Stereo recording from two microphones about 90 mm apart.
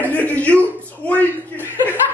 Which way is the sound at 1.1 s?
20° left (ahead or behind).